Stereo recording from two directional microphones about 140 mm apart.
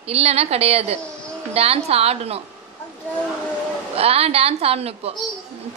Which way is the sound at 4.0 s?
45° right (ahead or behind).